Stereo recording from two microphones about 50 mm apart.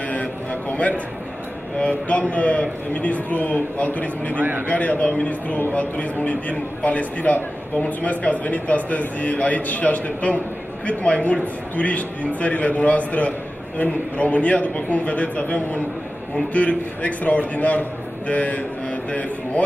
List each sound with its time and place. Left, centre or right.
0.1 s a sound: left
1.8 s a man's voice: left
4.4 s a man's voice: right
4.6 s a man's voice: left